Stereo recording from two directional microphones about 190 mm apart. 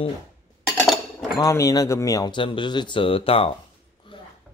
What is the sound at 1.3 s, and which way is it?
Speech, 15° left (ahead or behind).